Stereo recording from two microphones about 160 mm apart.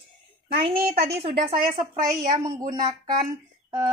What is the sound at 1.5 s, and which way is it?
Speech, 25° right (ahead or behind).